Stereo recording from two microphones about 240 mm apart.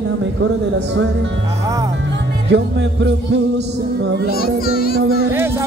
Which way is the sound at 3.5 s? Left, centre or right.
Right.